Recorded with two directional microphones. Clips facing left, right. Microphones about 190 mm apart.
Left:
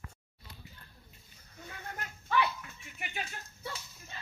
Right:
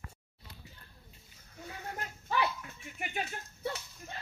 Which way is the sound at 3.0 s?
50° right (ahead or behind).